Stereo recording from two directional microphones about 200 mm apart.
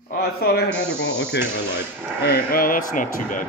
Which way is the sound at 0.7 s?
60° left (ahead or behind).